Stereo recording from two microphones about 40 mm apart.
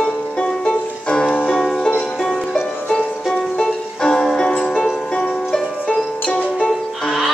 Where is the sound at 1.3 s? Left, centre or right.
Left.